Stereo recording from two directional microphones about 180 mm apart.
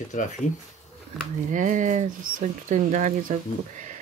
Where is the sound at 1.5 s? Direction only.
45° right (ahead or behind).